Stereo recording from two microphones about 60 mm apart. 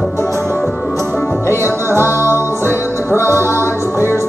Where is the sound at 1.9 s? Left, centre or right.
Right.